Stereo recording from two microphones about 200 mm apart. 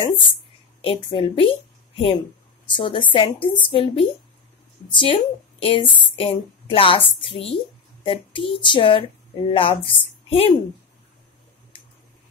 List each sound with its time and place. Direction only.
0.8 s a woman's voice: 25° left (ahead or behind)